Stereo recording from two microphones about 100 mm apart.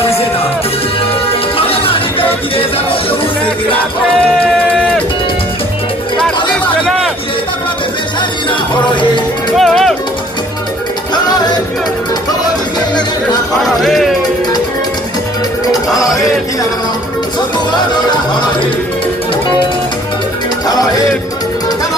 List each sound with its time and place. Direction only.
1.6 s music: 65° left (ahead or behind)
8.5 s music: 50° left (ahead or behind)
9.6 s music: 5° left (ahead or behind)
11.2 s music: 40° left (ahead or behind)
13.7 s music: centre (ahead or behind)
15.7 s music: 35° left (ahead or behind)
20.6 s music: 40° left (ahead or behind)